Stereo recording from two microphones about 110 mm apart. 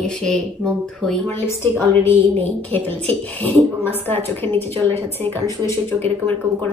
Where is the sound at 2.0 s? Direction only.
15° left (ahead or behind).